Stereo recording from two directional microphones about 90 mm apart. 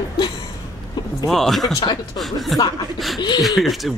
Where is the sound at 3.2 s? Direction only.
55° left (ahead or behind).